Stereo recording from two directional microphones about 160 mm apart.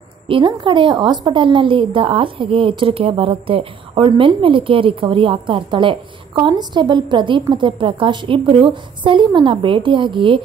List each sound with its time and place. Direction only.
0.3 s a woman's voice: 30° right (ahead or behind)